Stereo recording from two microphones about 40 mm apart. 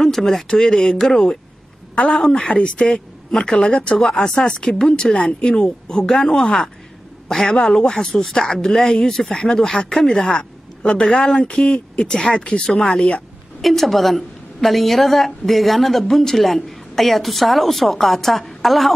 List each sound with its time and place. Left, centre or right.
0.0 s speech: centre
2.3 s speech: left; by 5.1 s centre
5.1 s speech: left
6.0 s speech: centre
12.4 s speech: left
13.6 s a woman's voice: centre